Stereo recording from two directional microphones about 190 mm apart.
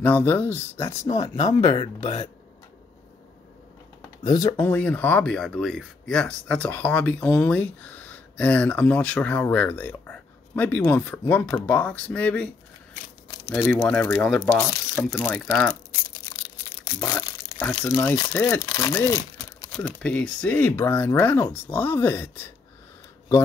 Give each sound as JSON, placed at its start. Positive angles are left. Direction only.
{"t": 0.0, "sound": "speech", "side_deg": 10}
{"t": 1.3, "sound": "speech", "side_deg": 35}
{"t": 4.2, "sound": "speech", "side_deg": 20}
{"t": 4.6, "sound": "speech", "side_deg": 10}
{"t": 14.5, "sound": "speech", "side_deg": 10}
{"t": 17.0, "sound": "speech", "side_deg": 15}
{"t": 19.7, "sound": "speech", "side_deg": 5}